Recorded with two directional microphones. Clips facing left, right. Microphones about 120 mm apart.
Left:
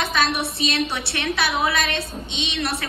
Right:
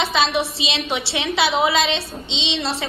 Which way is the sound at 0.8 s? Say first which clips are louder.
Right 2 dB; 20° right (ahead or behind).